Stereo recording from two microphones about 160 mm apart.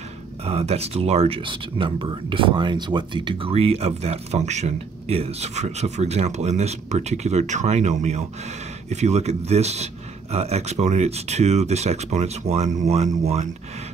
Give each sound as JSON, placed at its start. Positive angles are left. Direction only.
{"t": 0.5, "sound": "speech", "side_deg": -40}